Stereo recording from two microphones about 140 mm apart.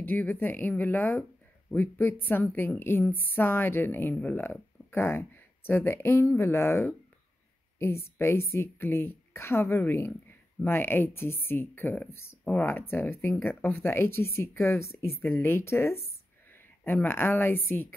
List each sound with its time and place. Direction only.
0.0 s a woman's voice: 15° left (ahead or behind)